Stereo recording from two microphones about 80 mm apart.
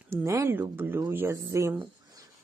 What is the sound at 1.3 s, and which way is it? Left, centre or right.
Speech, right.